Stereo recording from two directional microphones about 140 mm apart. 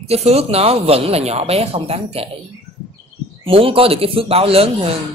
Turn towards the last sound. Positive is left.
turn(degrees=-45)  # may be behind; listen again after turning